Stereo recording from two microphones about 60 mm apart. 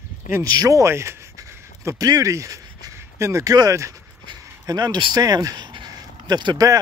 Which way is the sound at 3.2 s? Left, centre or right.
Right.